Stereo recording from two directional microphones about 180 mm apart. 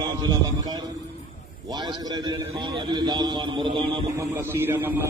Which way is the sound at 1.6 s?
25° right (ahead or behind).